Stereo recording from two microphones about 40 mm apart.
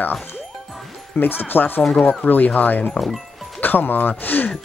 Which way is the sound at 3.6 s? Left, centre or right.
Left.